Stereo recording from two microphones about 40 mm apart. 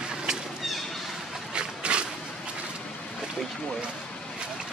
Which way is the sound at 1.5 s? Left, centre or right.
Right.